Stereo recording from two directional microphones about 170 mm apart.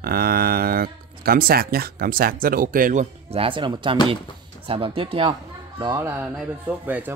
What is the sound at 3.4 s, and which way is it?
Speech, 30° right (ahead or behind).